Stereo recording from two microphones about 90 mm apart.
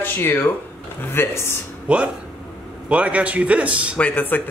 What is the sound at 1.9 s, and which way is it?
Speech, 15° right (ahead or behind).